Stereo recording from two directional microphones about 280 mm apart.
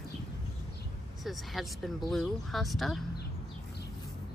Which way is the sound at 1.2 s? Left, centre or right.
Centre.